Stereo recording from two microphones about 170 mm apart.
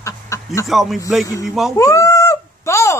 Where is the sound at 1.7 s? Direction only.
20° left (ahead or behind).